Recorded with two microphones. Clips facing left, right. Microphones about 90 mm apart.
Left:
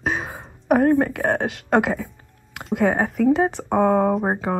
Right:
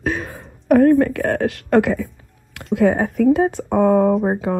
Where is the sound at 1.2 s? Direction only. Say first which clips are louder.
Right 2 dB; 25° left (ahead or behind).